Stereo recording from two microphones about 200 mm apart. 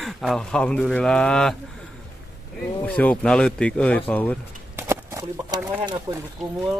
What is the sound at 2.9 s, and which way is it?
Speech, 5° left (ahead or behind).